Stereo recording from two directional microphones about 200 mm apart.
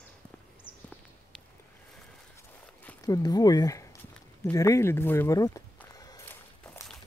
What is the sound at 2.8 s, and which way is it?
Speech, 10° left (ahead or behind).